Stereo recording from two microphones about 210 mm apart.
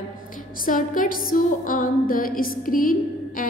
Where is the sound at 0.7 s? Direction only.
40° left (ahead or behind).